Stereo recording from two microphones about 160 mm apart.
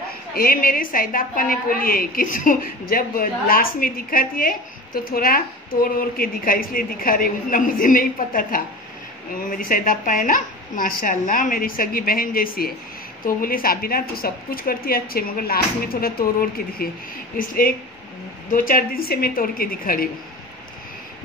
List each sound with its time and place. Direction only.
0.3 s a woman's voice: 65° left (ahead or behind)